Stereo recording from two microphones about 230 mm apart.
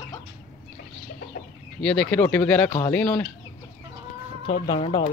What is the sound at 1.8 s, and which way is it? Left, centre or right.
Speech, centre.